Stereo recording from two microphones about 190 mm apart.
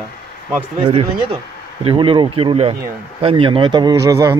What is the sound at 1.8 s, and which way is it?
Speech, 25° right (ahead or behind).